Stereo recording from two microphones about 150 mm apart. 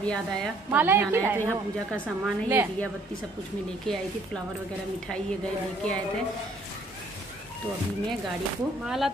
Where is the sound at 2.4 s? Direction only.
15° right (ahead or behind).